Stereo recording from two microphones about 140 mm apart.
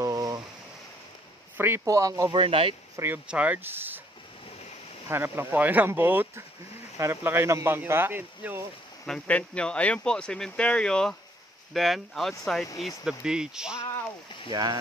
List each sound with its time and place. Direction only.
0.0 s a sound: 25° right (ahead or behind)
1.6 s speech: 20° right (ahead or behind)
2.3 s speech: 40° right (ahead or behind)
3.3 s speech: 10° right (ahead or behind)
5.0 s speech: 15° right (ahead or behind)
9.0 s speech: 5° left (ahead or behind)
14.5 s speech: 30° right (ahead or behind)